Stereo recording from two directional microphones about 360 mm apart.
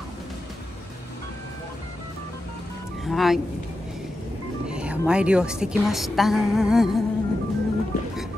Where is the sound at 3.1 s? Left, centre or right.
Centre.